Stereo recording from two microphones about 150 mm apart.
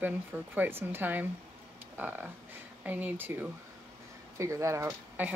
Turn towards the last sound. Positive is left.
turn(degrees=-15)  # may be behind; listen again after turning